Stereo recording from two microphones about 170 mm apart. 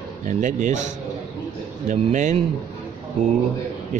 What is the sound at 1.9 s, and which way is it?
Speech, 45° right (ahead or behind).